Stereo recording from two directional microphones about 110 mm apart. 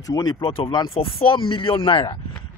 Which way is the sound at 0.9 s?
55° left (ahead or behind).